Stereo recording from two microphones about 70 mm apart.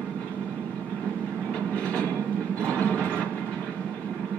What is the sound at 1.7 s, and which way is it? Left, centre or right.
Train, centre.